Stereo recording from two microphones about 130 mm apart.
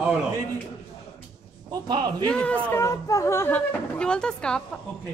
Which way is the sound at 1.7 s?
35° right (ahead or behind).